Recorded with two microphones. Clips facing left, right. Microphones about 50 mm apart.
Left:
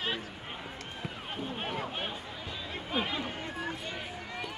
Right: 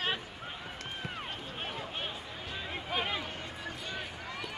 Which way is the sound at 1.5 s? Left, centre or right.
Centre.